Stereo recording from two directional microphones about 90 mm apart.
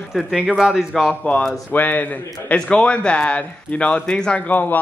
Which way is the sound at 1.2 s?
15° left (ahead or behind).